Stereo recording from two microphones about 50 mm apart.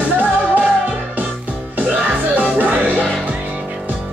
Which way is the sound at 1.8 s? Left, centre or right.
Right.